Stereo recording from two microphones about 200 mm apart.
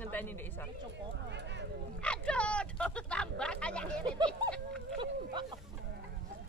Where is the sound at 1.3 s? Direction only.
60° right (ahead or behind).